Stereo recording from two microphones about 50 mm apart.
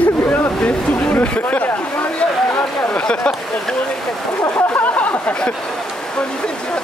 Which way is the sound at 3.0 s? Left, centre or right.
Left.